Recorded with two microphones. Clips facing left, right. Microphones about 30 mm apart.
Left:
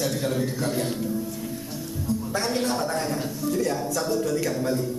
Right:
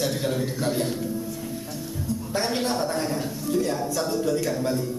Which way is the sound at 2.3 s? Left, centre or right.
Centre.